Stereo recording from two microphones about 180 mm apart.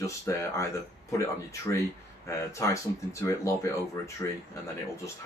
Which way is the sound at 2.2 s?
15° left (ahead or behind).